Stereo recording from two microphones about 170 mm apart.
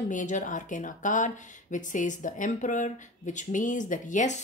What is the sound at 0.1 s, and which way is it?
Speech, 50° left (ahead or behind).